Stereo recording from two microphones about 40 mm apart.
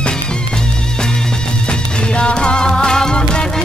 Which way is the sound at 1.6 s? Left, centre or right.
Left.